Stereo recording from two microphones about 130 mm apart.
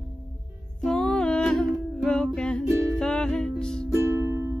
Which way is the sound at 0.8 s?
5° left (ahead or behind).